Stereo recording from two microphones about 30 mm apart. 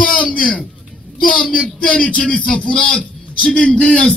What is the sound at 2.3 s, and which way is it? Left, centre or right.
A man's voice, left.